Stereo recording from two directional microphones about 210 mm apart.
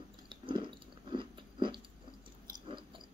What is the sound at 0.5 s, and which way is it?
Biting, 25° right (ahead or behind).